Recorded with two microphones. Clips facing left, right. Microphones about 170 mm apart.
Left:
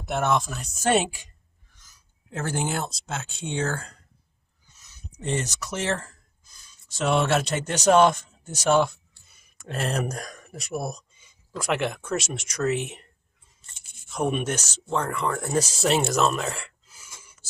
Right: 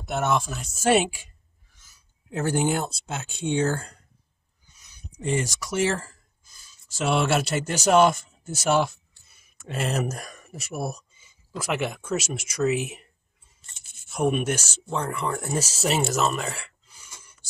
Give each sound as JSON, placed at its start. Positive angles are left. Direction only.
{"t": 0.0, "sound": "speech", "side_deg": 0}
{"t": 2.3, "sound": "speech", "side_deg": -10}
{"t": 5.1, "sound": "speech", "side_deg": -10}
{"t": 14.1, "sound": "speech", "side_deg": -5}